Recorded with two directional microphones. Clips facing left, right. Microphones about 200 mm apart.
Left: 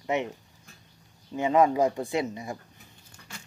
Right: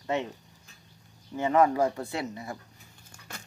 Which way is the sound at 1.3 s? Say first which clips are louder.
Left 1 dB; 15° left (ahead or behind).